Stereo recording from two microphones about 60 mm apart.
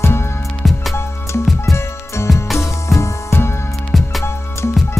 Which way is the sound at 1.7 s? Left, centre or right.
Left.